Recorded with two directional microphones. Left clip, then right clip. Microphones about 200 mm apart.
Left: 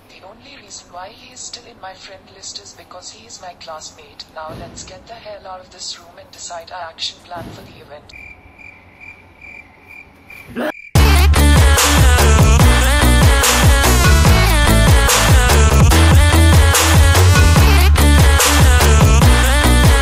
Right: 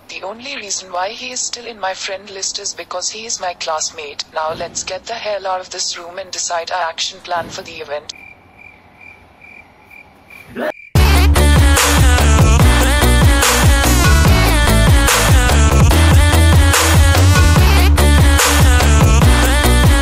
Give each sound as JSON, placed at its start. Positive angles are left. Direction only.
{"t": 0.2, "sound": "a woman's voice", "side_deg": -45}
{"t": 11.0, "sound": "music", "side_deg": 0}